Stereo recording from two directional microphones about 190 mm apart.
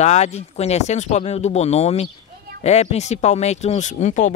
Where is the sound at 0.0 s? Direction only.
35° left (ahead or behind).